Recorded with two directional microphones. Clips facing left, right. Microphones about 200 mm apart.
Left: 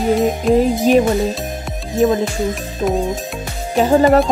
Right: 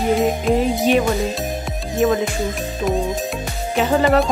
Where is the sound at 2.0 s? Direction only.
35° left (ahead or behind).